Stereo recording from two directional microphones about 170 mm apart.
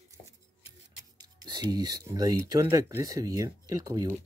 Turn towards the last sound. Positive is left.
turn(degrees=-20)  # may be behind; listen again after turning